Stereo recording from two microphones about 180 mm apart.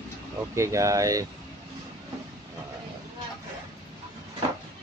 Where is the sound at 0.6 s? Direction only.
15° right (ahead or behind).